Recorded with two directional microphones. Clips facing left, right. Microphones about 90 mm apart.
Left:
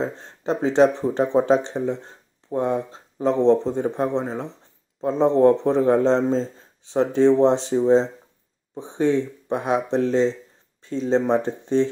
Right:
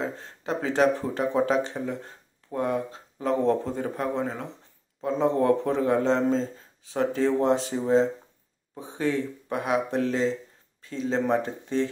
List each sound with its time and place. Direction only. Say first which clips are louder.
0.0 s a man's voice: left 5 dB; 30° left (ahead or behind)